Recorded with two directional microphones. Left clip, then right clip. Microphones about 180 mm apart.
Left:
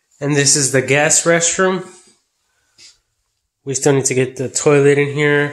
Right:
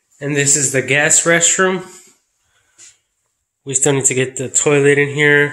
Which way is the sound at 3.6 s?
Centre (ahead or behind).